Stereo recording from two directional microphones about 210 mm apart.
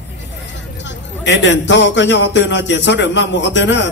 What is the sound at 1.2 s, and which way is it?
A man's voice, 60° left (ahead or behind).